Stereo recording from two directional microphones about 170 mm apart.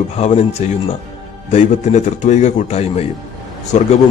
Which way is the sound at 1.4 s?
40° left (ahead or behind).